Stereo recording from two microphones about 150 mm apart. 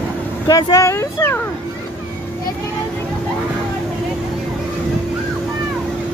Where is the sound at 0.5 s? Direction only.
25° left (ahead or behind).